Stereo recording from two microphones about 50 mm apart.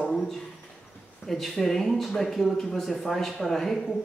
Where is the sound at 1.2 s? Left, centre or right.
Centre.